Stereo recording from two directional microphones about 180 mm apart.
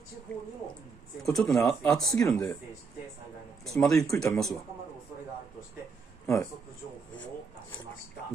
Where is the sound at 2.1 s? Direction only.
15° left (ahead or behind).